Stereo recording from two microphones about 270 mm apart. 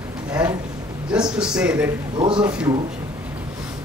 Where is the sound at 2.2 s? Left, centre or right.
Centre.